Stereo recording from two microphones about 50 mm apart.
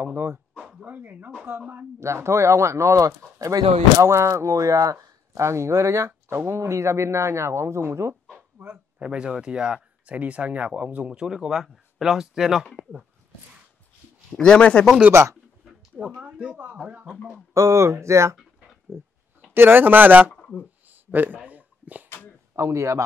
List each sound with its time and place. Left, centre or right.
0.0 s speech: right
2.0 s speech: right
5.3 s speech: right
6.2 s speech: right
9.0 s speech: centre
14.3 s speech: centre
16.0 s speech: centre
16.8 s speech: right
17.6 s speech: right
18.9 s speech: right
19.5 s speech: right
20.9 s a sound: right
22.6 s speech: right